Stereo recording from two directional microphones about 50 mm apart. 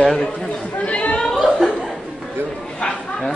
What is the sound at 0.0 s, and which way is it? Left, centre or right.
Speech, centre.